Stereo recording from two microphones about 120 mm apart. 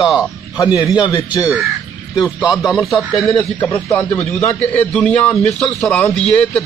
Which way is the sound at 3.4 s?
25° left (ahead or behind).